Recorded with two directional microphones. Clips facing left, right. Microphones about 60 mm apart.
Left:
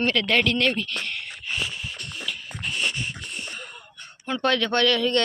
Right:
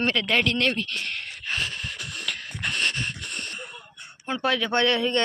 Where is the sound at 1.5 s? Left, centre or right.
Right.